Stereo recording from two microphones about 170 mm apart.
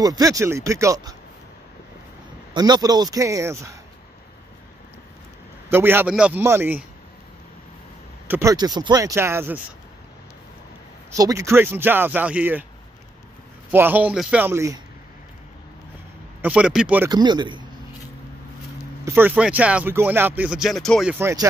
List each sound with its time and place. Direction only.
0.0 s a man's voice: 20° right (ahead or behind)
2.5 s a man's voice: 25° right (ahead or behind)
5.7 s speech: 10° right (ahead or behind)
8.3 s speech: 15° right (ahead or behind)
11.1 s speech: 20° right (ahead or behind)
13.7 s speech: 10° right (ahead or behind)
16.3 s speech: 5° right (ahead or behind)
17.1 s a man's voice: 25° right (ahead or behind)
19.0 s speech: 10° right (ahead or behind)